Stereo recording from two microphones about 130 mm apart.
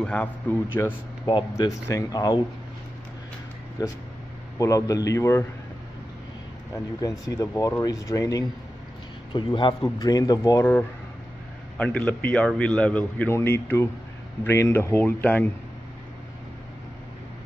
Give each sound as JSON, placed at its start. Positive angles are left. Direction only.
{"t": 0.0, "sound": "a man's voice", "side_deg": 10}
{"t": 1.2, "sound": "a man's voice", "side_deg": 40}
{"t": 1.9, "sound": "speech", "side_deg": 30}
{"t": 3.8, "sound": "speech", "side_deg": 30}
{"t": 6.7, "sound": "speech", "side_deg": 25}
{"t": 9.3, "sound": "a man's voice", "side_deg": 40}
{"t": 9.8, "sound": "speech", "side_deg": 25}
{"t": 10.6, "sound": "a man's voice", "side_deg": 10}